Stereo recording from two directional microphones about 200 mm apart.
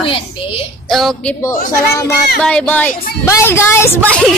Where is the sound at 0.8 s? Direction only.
Centre (ahead or behind).